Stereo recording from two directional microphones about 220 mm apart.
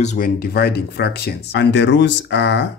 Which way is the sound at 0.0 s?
35° left (ahead or behind).